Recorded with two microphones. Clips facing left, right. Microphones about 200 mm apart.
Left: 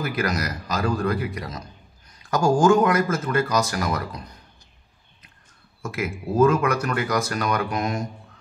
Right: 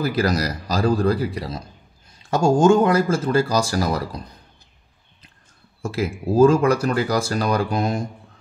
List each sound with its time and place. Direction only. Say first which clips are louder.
0.0 s speech: right 5 dB; 35° right (ahead or behind)
5.8 s speech: right 4 dB; 30° right (ahead or behind)